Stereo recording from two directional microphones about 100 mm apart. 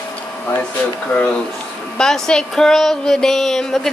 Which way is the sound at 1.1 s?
15° left (ahead or behind).